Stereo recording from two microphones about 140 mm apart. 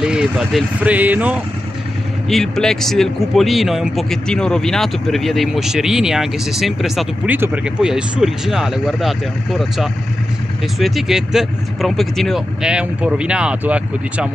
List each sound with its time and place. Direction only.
0.0 s speech: 5° right (ahead or behind)
2.2 s speech: 5° left (ahead or behind)
7.2 s speech: 15° right (ahead or behind)
7.8 s speech: 5° right (ahead or behind)